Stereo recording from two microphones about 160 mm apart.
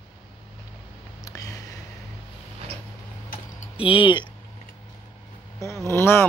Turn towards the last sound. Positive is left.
turn(degrees=15)  # may be behind; listen again after turning